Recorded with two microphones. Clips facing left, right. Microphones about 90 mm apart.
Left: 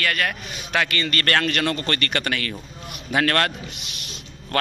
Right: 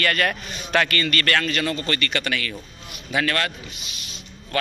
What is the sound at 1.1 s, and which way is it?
Speech, 40° left (ahead or behind).